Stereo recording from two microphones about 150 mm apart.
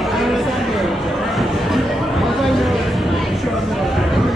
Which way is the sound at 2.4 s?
Centre (ahead or behind).